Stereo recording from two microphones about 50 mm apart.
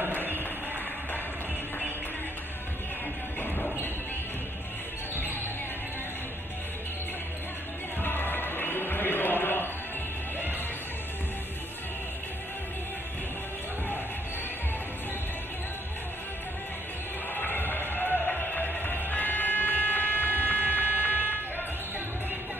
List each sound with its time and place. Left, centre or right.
0.0 s music: right
8.0 s music: left
17.3 s music: left